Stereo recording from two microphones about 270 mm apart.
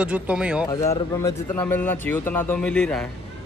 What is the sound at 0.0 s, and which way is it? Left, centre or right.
Speech, centre.